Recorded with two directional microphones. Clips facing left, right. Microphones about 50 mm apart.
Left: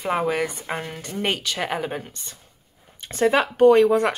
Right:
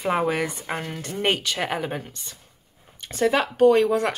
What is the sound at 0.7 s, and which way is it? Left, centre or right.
Speech, centre.